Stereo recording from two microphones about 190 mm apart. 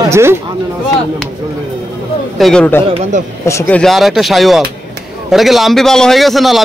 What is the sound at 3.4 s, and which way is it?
A man's voice, 15° left (ahead or behind).